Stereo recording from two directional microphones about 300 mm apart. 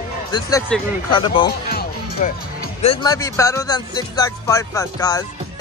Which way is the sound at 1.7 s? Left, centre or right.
Left.